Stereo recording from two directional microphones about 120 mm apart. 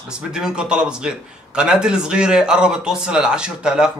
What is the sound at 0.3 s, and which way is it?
A man's voice, 5° right (ahead or behind).